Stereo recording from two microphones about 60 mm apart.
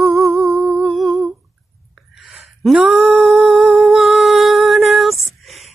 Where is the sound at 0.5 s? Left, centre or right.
Right.